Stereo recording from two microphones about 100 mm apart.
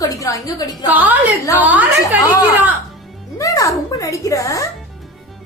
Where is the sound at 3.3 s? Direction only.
35° left (ahead or behind).